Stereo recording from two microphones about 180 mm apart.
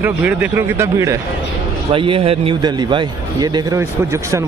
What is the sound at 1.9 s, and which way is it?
A man's voice, 30° right (ahead or behind).